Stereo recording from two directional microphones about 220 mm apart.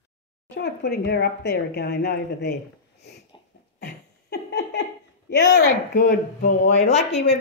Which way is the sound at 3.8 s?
50° left (ahead or behind).